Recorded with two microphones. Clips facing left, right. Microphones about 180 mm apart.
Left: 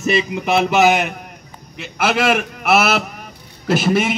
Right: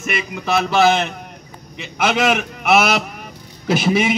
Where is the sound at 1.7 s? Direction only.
5° left (ahead or behind).